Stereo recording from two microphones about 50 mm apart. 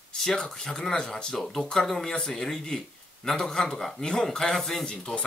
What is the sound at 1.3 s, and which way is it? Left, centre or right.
Speech, centre.